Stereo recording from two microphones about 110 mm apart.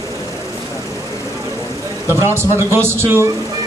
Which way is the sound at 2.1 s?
25° right (ahead or behind).